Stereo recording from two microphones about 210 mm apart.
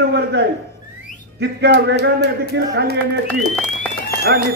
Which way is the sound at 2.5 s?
50° right (ahead or behind).